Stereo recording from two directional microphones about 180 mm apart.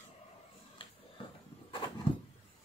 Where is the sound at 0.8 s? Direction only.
30° left (ahead or behind).